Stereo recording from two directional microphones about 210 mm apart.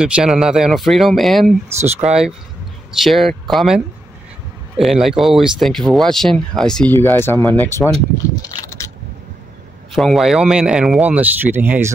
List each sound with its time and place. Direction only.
0.0 s speech: 5° right (ahead or behind)
3.0 s speech: centre (ahead or behind)
9.9 s speech: centre (ahead or behind)